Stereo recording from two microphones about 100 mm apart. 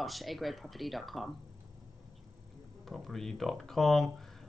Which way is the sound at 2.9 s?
5° left (ahead or behind).